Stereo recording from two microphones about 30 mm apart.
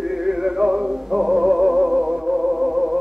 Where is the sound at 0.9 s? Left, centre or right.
Centre.